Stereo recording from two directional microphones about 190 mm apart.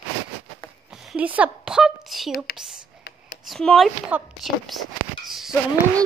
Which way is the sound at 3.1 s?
60° left (ahead or behind).